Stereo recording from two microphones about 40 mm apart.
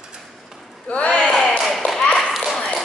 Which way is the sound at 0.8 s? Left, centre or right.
Left.